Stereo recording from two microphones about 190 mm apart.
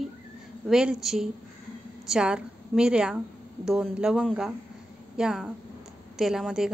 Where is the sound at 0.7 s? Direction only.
5° right (ahead or behind).